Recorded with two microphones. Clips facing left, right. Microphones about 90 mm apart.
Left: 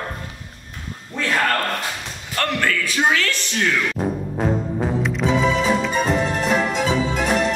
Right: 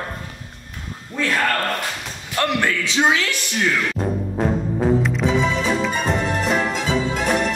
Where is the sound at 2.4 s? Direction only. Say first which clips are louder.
Right 1 dB; 15° right (ahead or behind).